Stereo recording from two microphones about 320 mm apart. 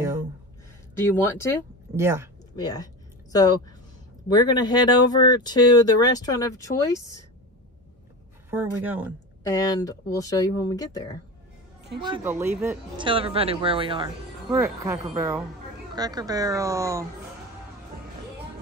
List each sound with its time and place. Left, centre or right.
0.9 s speech: centre
2.0 s speech: centre
2.5 s a sound: centre
4.3 s speech: centre
8.5 s speech: centre
9.5 s speech: centre
12.0 s speech: centre